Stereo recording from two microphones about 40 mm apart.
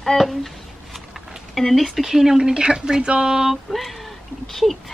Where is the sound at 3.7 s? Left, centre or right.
Centre.